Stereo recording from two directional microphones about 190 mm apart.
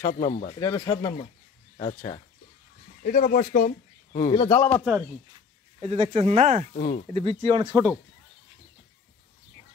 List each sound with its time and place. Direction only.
0.0 s speech: 45° left (ahead or behind)
0.6 s speech: 15° left (ahead or behind)
1.8 s speech: 35° left (ahead or behind)
3.0 s speech: 50° left (ahead or behind)
4.3 s speech: 25° left (ahead or behind)
4.6 s speech: 10° left (ahead or behind)
5.8 s speech: 30° right (ahead or behind)
6.7 s speech: 45° left (ahead or behind)
7.2 s speech: 30° right (ahead or behind)